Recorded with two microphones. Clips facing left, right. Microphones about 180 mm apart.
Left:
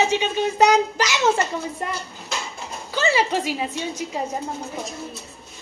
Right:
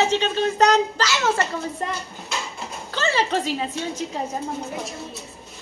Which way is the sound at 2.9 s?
10° left (ahead or behind).